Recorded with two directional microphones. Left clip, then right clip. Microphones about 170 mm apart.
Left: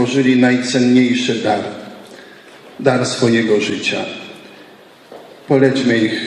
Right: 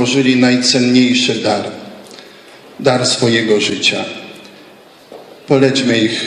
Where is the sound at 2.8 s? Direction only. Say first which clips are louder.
Right 2 dB; 20° left (ahead or behind).